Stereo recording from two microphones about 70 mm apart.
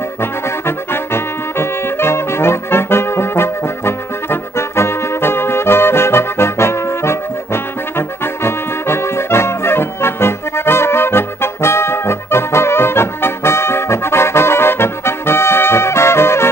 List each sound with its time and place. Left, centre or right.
0.2 s brass instrument: left
8.4 s music: left